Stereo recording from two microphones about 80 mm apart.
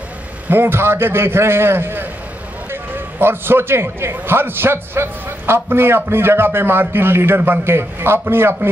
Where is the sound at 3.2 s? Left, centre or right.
Right.